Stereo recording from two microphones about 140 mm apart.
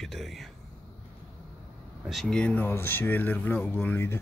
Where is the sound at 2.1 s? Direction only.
5° left (ahead or behind).